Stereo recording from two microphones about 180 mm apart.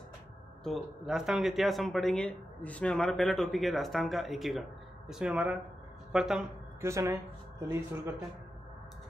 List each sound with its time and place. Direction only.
0.7 s speech: centre (ahead or behind)
6.8 s speech: 15° right (ahead or behind)